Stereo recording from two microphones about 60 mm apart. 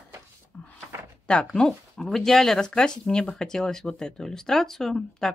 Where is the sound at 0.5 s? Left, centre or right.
Centre.